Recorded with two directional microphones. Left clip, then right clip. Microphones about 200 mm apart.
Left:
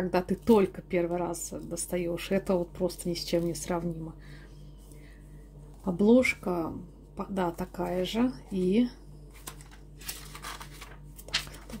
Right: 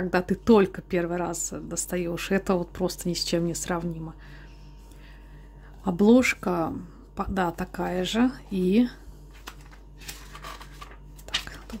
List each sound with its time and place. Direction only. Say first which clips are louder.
0.1 s speech: right 4 dB; 25° right (ahead or behind)
5.9 s speech: right 3 dB; 30° right (ahead or behind)